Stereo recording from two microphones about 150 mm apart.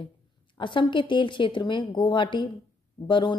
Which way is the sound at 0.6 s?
30° left (ahead or behind).